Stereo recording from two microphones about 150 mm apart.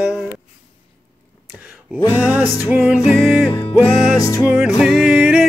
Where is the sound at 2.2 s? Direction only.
10° right (ahead or behind).